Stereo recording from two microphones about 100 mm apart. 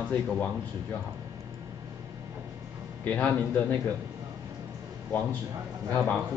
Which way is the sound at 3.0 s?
15° left (ahead or behind).